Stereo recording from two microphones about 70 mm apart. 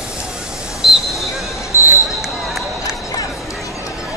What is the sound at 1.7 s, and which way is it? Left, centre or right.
Basketball bounce, right.